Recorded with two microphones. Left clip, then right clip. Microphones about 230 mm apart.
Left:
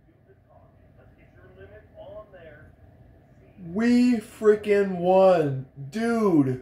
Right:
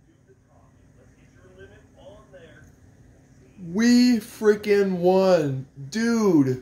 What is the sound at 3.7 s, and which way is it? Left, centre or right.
Speech, right.